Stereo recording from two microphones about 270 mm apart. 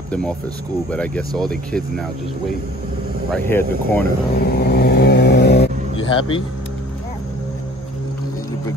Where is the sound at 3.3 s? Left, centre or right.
Centre.